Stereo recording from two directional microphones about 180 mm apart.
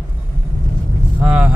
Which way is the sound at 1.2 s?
5° right (ahead or behind).